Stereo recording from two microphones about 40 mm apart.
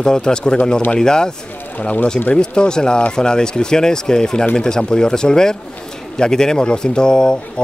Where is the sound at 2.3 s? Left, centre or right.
Left.